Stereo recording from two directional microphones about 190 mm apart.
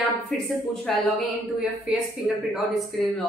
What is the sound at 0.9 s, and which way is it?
A woman's voice, centre (ahead or behind).